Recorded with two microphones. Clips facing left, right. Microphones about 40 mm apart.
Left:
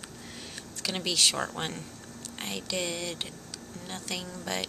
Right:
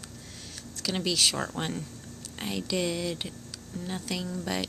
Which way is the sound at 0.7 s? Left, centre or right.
Centre.